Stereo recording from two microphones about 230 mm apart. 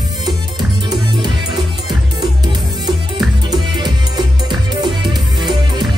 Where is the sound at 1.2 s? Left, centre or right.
Centre.